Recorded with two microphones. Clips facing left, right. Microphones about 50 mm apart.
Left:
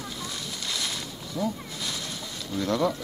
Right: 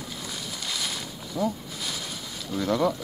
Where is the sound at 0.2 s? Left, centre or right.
Centre.